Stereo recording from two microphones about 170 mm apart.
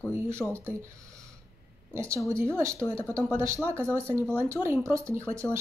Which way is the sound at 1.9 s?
15° right (ahead or behind).